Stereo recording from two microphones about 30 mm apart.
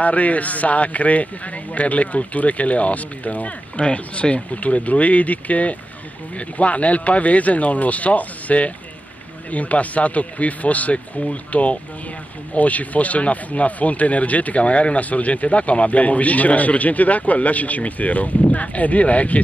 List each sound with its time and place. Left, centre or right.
0.0 s speech: left
14.6 s speech: left